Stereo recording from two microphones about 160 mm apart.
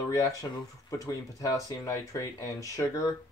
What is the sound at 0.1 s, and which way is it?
Speech, 20° left (ahead or behind).